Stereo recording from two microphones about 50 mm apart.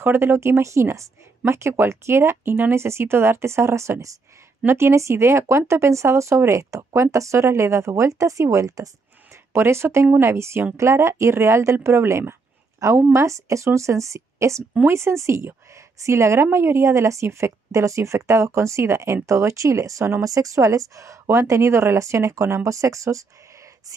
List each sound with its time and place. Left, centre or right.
0.0 s speech: right
1.5 s speech: right
2.7 s speech: right
4.6 s speech: right
9.5 s speech: right
13.1 s speech: right
14.9 s a woman's voice: right